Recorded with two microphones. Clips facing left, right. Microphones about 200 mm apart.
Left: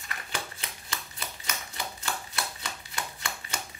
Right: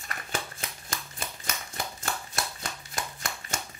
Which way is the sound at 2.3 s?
45° right (ahead or behind).